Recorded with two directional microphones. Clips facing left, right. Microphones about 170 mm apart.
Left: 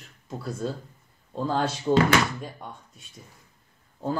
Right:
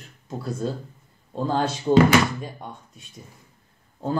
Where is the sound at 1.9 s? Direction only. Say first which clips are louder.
Right 5 dB; 20° right (ahead or behind).